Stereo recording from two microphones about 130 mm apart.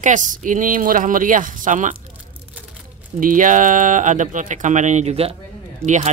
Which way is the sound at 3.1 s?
90° right.